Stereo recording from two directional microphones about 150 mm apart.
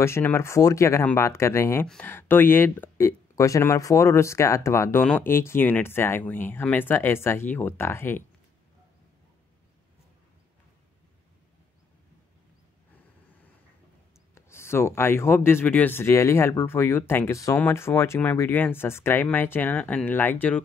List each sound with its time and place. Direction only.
0.0 s speech: 15° left (ahead or behind)
14.3 s speech: 15° left (ahead or behind)